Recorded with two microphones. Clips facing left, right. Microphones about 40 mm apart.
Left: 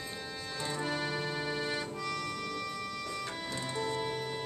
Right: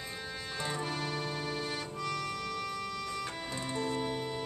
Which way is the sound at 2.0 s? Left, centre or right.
Centre.